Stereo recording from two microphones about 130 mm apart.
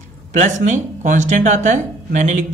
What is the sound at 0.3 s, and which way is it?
Speech, 75° right (ahead or behind).